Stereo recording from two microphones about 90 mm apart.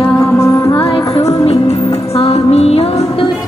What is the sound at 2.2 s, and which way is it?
Music, 90° left.